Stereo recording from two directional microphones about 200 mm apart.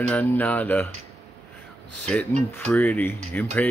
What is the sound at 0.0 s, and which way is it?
Speech, 10° left (ahead or behind).